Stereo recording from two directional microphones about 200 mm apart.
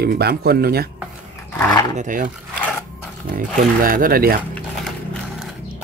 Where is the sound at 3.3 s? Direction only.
45° right (ahead or behind).